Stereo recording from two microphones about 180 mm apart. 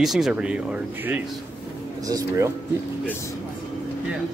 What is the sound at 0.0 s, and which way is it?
Speech, centre (ahead or behind).